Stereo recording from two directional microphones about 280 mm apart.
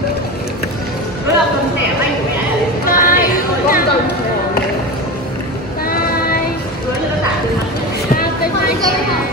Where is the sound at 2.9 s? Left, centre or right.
Left.